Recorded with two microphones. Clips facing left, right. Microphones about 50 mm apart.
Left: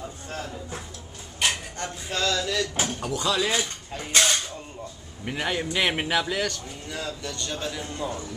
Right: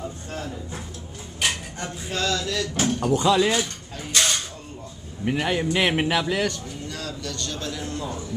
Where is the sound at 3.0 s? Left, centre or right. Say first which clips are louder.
Right 8 dB; right.